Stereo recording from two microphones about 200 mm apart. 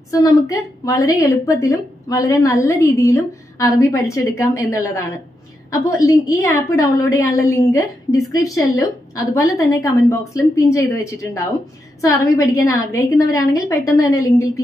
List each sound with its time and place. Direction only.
0.1 s a woman's voice: 15° left (ahead or behind)